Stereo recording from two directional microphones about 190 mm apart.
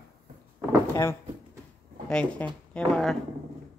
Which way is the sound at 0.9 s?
15° left (ahead or behind).